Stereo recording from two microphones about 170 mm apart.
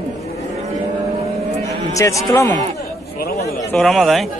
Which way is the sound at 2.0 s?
20° left (ahead or behind).